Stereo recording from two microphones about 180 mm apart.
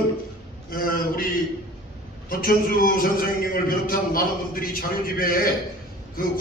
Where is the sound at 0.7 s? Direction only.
55° left (ahead or behind).